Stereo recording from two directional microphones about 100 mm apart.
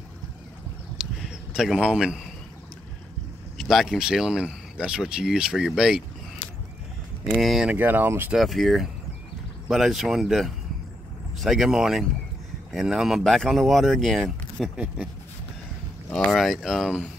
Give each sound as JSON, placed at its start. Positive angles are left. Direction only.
{"t": 1.2, "sound": "a man's voice", "side_deg": -5}
{"t": 3.5, "sound": "speech", "side_deg": 0}
{"t": 7.2, "sound": "speech", "side_deg": 0}
{"t": 7.6, "sound": "speech", "side_deg": -20}
{"t": 8.4, "sound": "speech", "side_deg": 0}
{"t": 16.1, "sound": "speech", "side_deg": 5}